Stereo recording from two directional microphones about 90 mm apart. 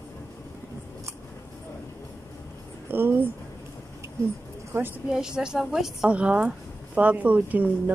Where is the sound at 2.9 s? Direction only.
25° right (ahead or behind).